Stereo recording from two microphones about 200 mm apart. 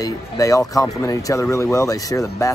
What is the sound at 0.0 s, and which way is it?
Speech, 15° left (ahead or behind).